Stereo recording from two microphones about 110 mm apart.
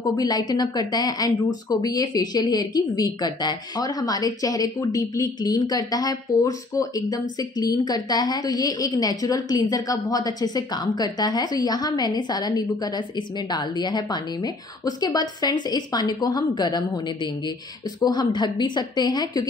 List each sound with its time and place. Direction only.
0.0 s speech: 35° left (ahead or behind)